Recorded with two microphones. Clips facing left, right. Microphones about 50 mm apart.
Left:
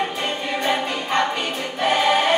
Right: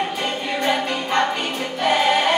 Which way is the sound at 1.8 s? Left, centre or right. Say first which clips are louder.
Even; centre.